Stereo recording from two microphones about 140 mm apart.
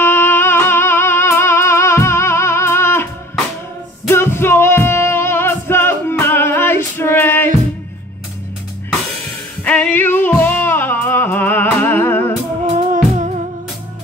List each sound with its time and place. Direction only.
0.0 s music: 15° left (ahead or behind)
4.1 s music: 15° left (ahead or behind)
9.6 s music: 10° left (ahead or behind)
12.9 s music: 60° right (ahead or behind)